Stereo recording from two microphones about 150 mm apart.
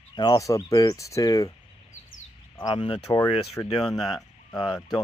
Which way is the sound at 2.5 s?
35° left (ahead or behind).